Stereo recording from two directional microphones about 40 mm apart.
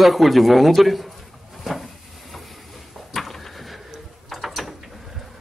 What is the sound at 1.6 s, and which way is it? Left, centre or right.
Vehicle, centre.